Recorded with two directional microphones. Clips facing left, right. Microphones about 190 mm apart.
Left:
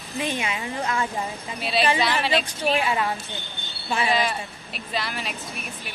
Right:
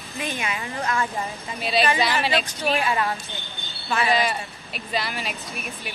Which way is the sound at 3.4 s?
Centre (ahead or behind).